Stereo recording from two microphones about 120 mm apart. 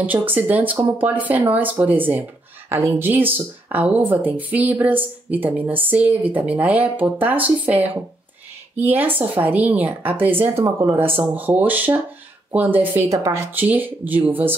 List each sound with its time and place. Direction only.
0.0 s speech: 15° right (ahead or behind)